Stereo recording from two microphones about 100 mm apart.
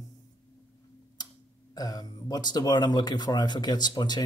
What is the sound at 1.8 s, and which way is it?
Speech, 40° left (ahead or behind).